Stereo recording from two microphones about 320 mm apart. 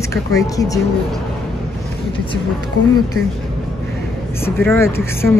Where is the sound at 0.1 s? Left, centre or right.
Centre.